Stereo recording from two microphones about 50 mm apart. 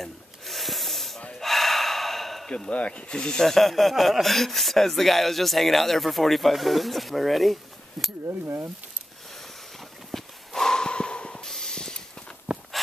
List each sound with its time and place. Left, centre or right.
0.0 s rub: centre
1.4 s gasp: centre
2.7 s speech: left; by 8.1 s centre
8.3 s speech: right
9.3 s a sound: centre
12.5 s walk: right